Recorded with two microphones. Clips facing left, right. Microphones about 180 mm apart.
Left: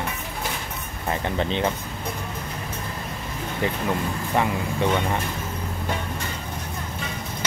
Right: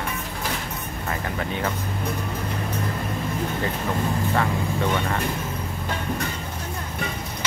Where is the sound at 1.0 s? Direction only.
25° left (ahead or behind).